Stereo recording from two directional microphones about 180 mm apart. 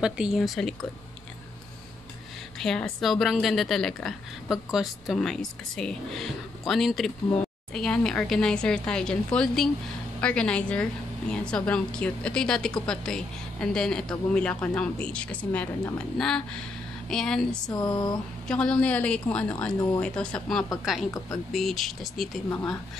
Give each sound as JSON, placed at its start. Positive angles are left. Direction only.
{"t": 0.0, "sound": "a woman's voice", "side_deg": 0}
{"t": 2.6, "sound": "a woman's voice", "side_deg": 5}
{"t": 17.6, "sound": "a sound", "side_deg": 20}
{"t": 18.5, "sound": "a woman's voice", "side_deg": 5}